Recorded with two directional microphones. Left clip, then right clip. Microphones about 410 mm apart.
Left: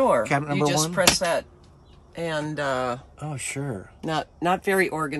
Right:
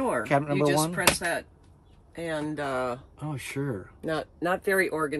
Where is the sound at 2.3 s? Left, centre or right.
Centre.